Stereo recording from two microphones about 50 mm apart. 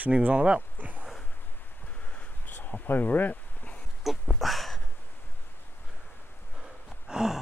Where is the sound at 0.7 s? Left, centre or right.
Right.